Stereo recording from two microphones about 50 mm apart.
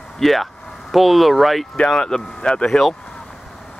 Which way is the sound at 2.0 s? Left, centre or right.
Centre.